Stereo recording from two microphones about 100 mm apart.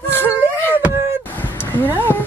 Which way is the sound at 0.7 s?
20° right (ahead or behind).